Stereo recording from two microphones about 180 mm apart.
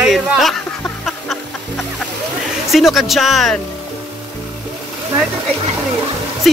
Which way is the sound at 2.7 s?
Centre (ahead or behind).